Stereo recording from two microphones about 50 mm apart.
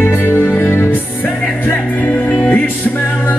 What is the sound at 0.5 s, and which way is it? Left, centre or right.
Music, left.